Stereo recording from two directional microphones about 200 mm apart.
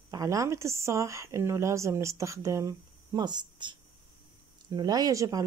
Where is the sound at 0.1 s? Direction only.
15° right (ahead or behind).